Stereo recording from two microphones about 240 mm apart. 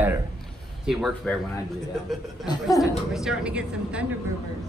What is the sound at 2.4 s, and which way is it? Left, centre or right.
Speech, centre.